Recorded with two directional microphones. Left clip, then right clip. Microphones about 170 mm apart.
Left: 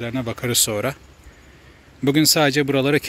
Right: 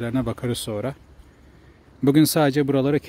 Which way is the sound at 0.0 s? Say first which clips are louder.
Even; 35° right (ahead or behind).